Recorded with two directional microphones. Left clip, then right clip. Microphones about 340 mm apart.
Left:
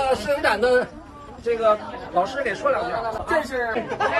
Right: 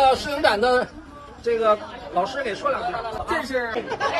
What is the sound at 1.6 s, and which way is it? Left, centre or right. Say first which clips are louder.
Speech: left 2 dB; centre.